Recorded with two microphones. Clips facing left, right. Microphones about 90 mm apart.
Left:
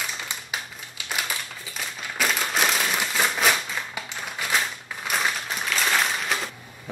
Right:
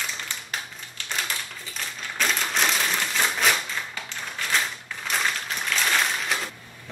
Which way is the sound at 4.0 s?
10° left (ahead or behind).